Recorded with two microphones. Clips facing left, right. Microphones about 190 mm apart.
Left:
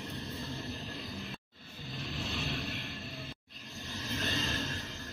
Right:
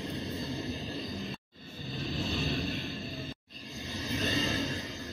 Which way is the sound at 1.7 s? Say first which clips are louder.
Right 5 dB; 40° right (ahead or behind).